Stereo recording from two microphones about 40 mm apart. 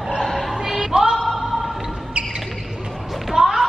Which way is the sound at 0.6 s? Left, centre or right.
Centre.